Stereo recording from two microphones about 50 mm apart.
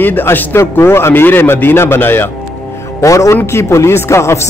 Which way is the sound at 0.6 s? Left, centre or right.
Left.